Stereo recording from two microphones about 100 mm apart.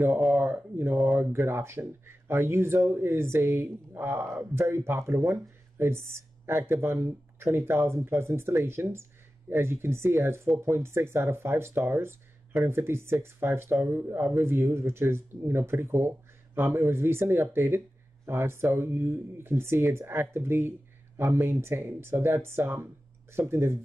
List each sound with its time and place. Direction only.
0.3 s speech: 20° right (ahead or behind)